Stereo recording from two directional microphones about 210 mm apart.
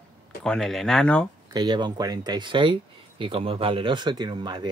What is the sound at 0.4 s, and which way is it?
Speech, centre (ahead or behind).